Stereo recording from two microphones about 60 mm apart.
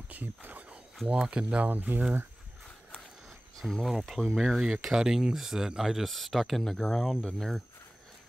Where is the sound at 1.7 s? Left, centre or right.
Right.